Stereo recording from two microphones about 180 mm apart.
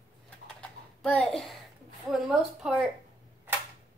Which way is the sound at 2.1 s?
Centre (ahead or behind).